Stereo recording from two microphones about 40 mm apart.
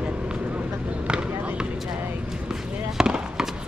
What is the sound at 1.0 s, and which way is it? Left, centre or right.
Basketball bounce, right.